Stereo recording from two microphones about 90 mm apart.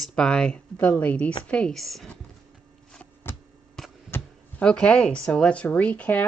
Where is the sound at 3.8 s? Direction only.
5° left (ahead or behind).